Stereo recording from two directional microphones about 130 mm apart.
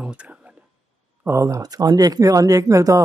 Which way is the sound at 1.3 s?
25° right (ahead or behind).